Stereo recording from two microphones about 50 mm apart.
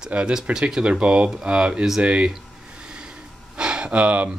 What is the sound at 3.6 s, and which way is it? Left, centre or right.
Gasp, centre.